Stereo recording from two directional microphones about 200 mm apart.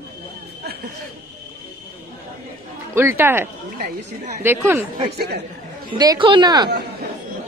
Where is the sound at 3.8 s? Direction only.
45° right (ahead or behind).